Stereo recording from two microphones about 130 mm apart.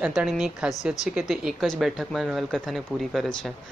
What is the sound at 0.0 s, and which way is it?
Speech, 5° right (ahead or behind).